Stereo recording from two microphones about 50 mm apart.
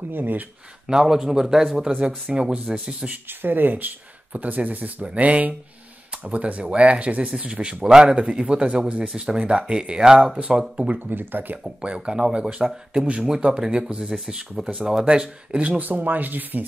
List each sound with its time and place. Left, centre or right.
0.1 s speech: right
0.8 s speech: centre
3.3 s speech: right; by 10.6 s centre
10.9 s speech: right
11.8 s speech: centre
15.8 s speech: right